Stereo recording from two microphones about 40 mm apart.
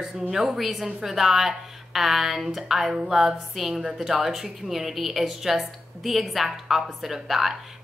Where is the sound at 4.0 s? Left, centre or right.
Centre.